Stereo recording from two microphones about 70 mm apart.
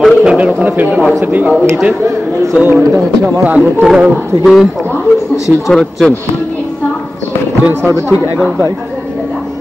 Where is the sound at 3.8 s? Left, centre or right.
Centre.